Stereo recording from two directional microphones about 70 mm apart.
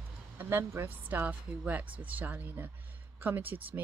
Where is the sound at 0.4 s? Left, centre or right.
Right.